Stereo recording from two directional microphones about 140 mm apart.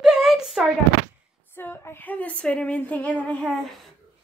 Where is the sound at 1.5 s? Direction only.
15° left (ahead or behind).